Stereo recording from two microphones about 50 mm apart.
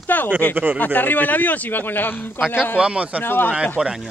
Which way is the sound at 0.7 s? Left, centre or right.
Left.